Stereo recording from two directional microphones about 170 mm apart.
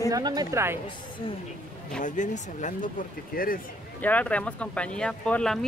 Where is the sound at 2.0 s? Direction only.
45° left (ahead or behind).